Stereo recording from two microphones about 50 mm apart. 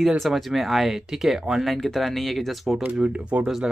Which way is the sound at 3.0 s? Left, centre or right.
Right.